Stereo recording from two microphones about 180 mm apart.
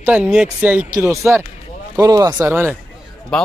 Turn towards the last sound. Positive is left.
turn(degrees=5)  # may be behind; listen again after turning